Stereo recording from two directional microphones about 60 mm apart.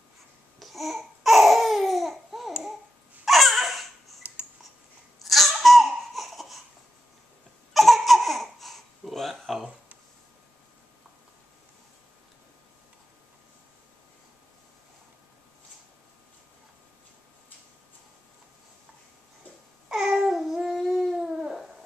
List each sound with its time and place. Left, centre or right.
0.6 s babbling: centre
3.3 s a sound: centre
4.2 s camera: right
5.2 s laughter: centre
7.7 s laughter: centre
19.9 s babbling: centre
20.3 s dog: centre